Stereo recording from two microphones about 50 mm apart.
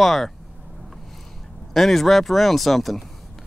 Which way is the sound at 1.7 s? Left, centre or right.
Centre.